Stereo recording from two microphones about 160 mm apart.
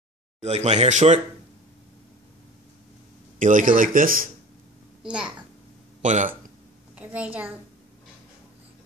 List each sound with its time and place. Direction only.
0.4 s speech: 45° right (ahead or behind)
3.3 s speech: 55° right (ahead or behind)
6.0 s speech: 50° right (ahead or behind)
7.0 s a woman's voice: 10° right (ahead or behind)